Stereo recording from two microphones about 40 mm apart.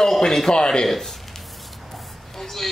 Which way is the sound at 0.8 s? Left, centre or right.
Centre.